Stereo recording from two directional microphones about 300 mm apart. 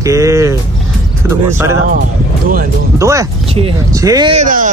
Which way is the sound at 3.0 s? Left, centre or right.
Centre.